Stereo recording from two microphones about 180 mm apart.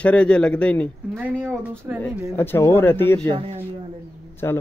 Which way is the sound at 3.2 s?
35° right (ahead or behind).